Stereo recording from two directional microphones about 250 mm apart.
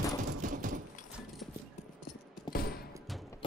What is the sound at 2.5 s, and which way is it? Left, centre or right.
Music, left.